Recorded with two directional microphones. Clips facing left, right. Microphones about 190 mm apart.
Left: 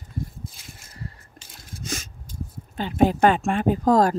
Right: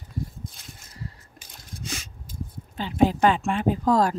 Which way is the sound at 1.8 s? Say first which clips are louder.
Left 4 dB; 45° left (ahead or behind).